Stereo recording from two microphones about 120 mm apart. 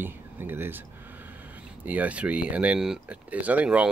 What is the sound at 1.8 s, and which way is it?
Speech, 10° right (ahead or behind).